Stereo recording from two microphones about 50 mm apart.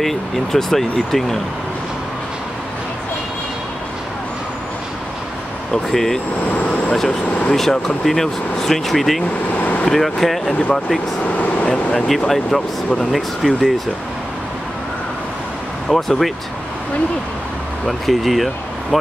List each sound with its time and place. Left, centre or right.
0.0 s speech: centre
5.9 s speech: centre
6.5 s vehicle: left
6.9 s speech: centre
7.5 s speech: centre
9.6 s vehicle: left
9.8 s speech: centre
11.6 s a sound: centre
12.3 s speech: centre
15.9 s speech: centre
17.8 s speech: centre